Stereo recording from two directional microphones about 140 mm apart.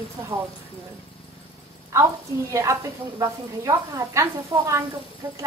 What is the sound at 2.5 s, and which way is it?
Speech, 20° right (ahead or behind).